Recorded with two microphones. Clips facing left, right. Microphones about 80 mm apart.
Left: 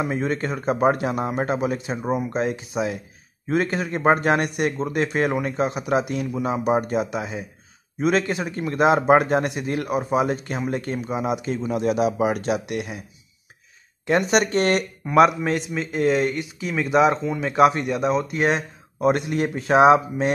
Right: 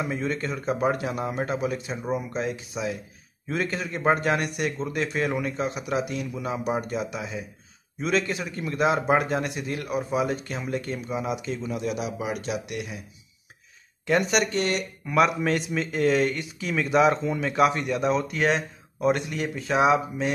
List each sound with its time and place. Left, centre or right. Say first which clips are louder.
0.0 s speech: left 4 dB; left
7.2 s speech: left 5 dB; left
8.0 s speech: left 4 dB; left
11.8 s speech: left 9 dB; left
14.0 s speech: left 3 dB; left
14.6 s speech: left 6 dB; left
15.5 s speech: left 1 dB; centre; by 17.9 s left
17.9 s speech: left 2 dB; centre
18.9 s speech: left 4 dB; left